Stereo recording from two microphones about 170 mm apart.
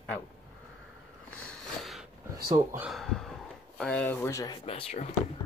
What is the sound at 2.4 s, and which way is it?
Speech, 20° right (ahead or behind).